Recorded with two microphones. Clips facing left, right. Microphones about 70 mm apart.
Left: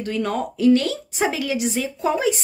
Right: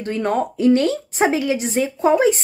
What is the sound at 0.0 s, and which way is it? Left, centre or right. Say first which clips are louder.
A woman's voice: right 3 dB; right.